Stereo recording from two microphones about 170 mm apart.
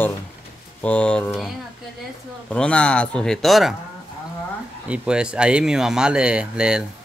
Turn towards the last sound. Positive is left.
turn(degrees=-5)  # may be behind; listen again after turning